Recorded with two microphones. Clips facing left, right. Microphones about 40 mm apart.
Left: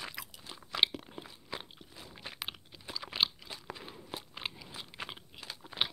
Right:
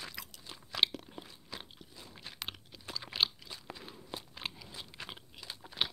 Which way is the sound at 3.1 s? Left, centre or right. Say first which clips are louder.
Left 1 dB; centre.